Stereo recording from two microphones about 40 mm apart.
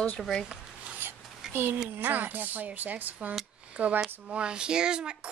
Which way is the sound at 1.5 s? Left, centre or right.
Right.